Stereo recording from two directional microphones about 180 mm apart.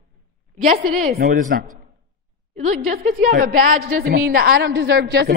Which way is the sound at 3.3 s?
50° right (ahead or behind).